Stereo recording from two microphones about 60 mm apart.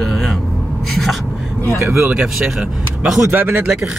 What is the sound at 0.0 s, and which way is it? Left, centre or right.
Gasp, centre.